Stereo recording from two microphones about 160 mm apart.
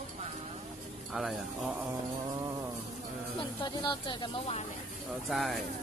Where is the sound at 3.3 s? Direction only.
30° left (ahead or behind).